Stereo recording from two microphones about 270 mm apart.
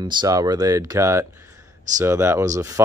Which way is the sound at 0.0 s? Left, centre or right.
Centre.